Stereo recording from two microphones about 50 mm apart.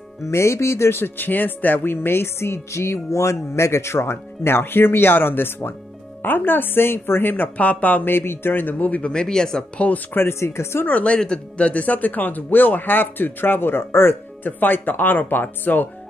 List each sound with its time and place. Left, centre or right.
0.3 s speech: left
7.5 s speech: left
8.1 s speech: left
9.1 s speech: centre
9.8 s speech: left
10.1 s speech: left
10.9 s speech: left
11.1 s speech: centre; by 14.5 s left
14.6 s speech: left